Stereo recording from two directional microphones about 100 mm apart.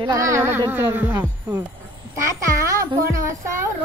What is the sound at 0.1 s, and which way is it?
Speech, 30° right (ahead or behind).